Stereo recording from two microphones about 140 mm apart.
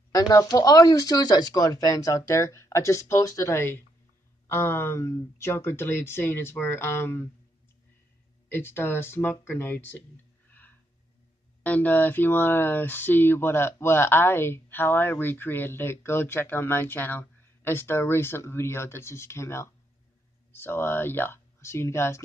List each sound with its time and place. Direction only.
0.1 s speech: 25° left (ahead or behind)
8.5 s speech: 15° left (ahead or behind)
10.5 s a sound: 15° left (ahead or behind)
11.6 s speech: 10° left (ahead or behind)